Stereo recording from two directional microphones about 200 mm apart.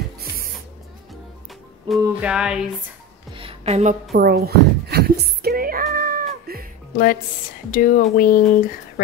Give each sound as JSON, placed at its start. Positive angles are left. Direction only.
{"t": 1.9, "sound": "music", "side_deg": -5}
{"t": 3.3, "sound": "music", "side_deg": -30}
{"t": 4.1, "sound": "speech", "side_deg": -50}
{"t": 5.9, "sound": "cat", "side_deg": -50}
{"t": 7.7, "sound": "speech", "side_deg": 45}